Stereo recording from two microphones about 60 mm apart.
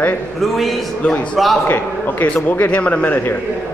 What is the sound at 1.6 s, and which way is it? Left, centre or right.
A man's voice, left.